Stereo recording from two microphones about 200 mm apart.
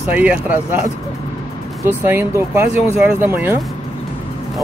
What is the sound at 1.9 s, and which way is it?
Speech, 10° right (ahead or behind).